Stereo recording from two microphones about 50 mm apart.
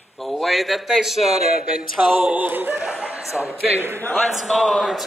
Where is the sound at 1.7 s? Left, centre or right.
Right.